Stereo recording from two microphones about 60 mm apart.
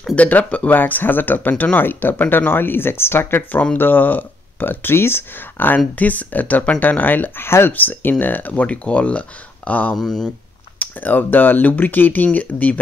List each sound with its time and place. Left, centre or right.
0.1 s speech: left
9.9 s speech: centre
10.8 s speech: left